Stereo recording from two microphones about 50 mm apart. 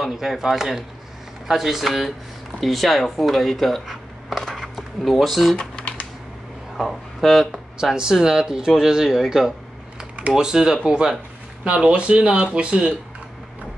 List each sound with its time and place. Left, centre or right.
0.0 s speech: centre
5.6 s typing: left
6.8 s speech: centre; by 12.9 s right